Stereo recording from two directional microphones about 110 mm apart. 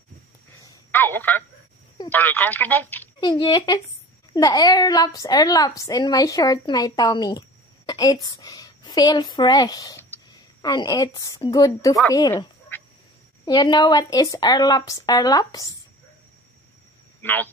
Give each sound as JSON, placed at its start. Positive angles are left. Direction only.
{"t": 0.9, "sound": "speech", "side_deg": 20}
{"t": 3.2, "sound": "a woman's voice", "side_deg": 40}
{"t": 12.7, "sound": "duck", "side_deg": 15}
{"t": 13.5, "sound": "a woman's voice", "side_deg": 35}
{"t": 17.2, "sound": "speech", "side_deg": 15}